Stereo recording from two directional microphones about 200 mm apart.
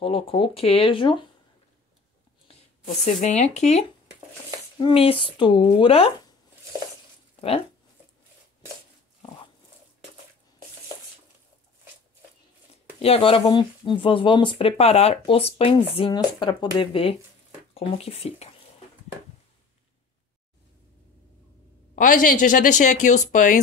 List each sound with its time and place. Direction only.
0.0 s speech: 25° left (ahead or behind)
2.4 s a sound: 40° left (ahead or behind)
3.5 s speech: 35° left (ahead or behind)
7.3 s speech: 30° left (ahead or behind)
13.0 s speech: 30° left (ahead or behind)
21.9 s speech: 40° left (ahead or behind)